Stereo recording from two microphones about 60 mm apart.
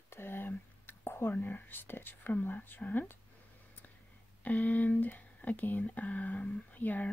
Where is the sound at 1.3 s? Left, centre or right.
Left.